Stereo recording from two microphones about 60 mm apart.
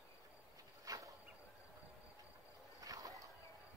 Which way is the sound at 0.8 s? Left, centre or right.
Right.